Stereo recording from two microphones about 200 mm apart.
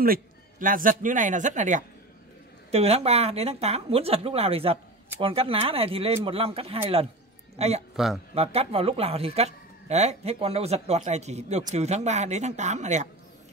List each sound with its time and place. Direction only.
0.0 s speech: 45° right (ahead or behind)
7.9 s speech: centre (ahead or behind)
8.4 s speech: 30° right (ahead or behind)